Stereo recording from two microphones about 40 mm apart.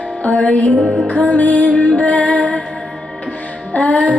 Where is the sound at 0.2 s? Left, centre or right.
Left.